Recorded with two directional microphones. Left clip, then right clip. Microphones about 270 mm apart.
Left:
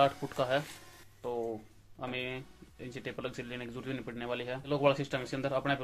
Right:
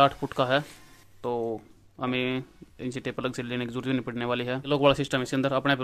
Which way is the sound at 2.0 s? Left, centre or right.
Right.